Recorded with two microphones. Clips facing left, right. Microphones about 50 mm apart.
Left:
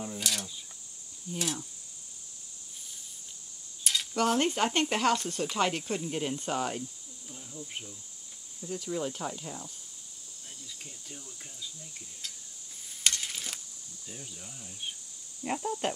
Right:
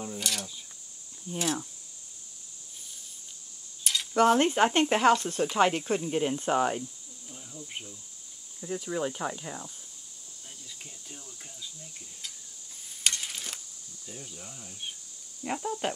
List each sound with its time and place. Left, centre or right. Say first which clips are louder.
0.0 s a sound: right 1 dB; centre
1.3 s speech: right 4 dB; centre
3.8 s mechanisms: even; centre
4.1 s speech: right 6 dB; centre
7.2 s insect: even; centre
8.7 s speech: right 2 dB; centre
10.8 s speech: even; centre
13.0 s a sound: even; centre
14.0 s speech: right 2 dB; centre
14.3 s speech: right 2 dB; centre